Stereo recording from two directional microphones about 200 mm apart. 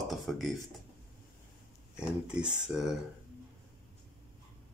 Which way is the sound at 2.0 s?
5° right (ahead or behind).